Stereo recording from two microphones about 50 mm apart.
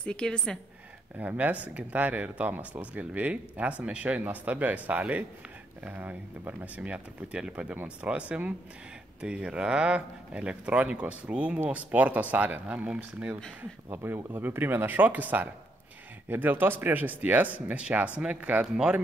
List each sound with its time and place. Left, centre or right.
0.0 s a woman's voice: centre
1.1 s speech: right
14.0 s speech: right